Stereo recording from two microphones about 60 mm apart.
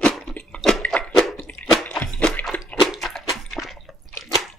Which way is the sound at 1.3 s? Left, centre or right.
Left.